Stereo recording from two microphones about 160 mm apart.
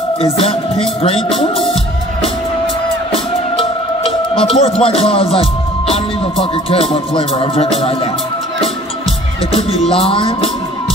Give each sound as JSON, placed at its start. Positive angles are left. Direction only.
{"t": 0.2, "sound": "music", "side_deg": 35}
{"t": 3.1, "sound": "music", "side_deg": 35}
{"t": 9.8, "sound": "music", "side_deg": 35}